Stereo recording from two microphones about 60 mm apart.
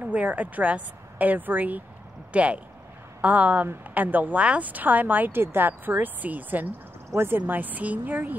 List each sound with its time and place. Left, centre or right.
0.0 s speech: right